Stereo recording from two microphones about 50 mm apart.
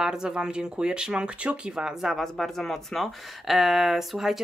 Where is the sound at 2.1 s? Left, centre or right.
Centre.